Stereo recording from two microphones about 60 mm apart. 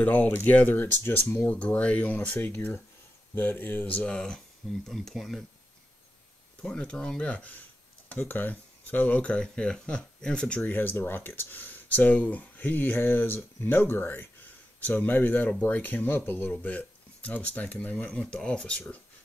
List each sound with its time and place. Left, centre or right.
0.0 s speech: left; by 5.4 s centre
6.6 s speech: centre
10.6 s speech: left; by 18.9 s centre